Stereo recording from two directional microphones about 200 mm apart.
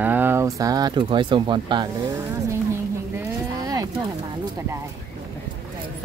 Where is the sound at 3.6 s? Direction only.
20° right (ahead or behind).